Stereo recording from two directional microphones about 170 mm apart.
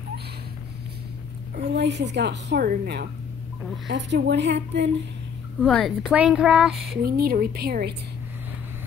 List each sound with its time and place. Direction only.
1.6 s a woman's voice: 90° right; by 3.1 s 70° right (ahead or behind)
3.8 s a woman's voice: 90° right
5.7 s a woman's voice: centre (ahead or behind)
7.0 s a woman's voice: 60° right (ahead or behind)